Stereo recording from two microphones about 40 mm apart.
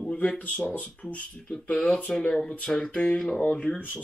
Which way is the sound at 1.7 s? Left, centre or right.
Left.